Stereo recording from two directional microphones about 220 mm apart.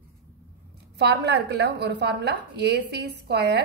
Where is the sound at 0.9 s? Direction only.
50° right (ahead or behind).